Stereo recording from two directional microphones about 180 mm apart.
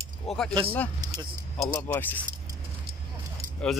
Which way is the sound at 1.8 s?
10° left (ahead or behind).